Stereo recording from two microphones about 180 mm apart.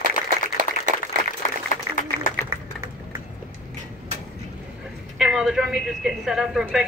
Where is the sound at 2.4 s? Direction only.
15° right (ahead or behind).